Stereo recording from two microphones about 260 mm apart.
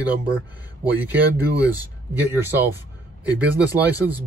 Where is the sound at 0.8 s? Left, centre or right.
Centre.